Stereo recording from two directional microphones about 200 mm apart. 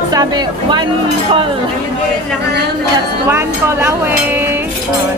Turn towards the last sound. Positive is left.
turn(degrees=-10)  # may be behind; listen again after turning